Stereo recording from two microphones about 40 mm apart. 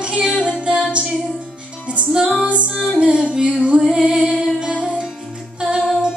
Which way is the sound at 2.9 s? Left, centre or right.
Right.